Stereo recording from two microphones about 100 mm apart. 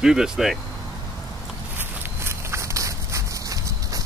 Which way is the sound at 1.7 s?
20° right (ahead or behind).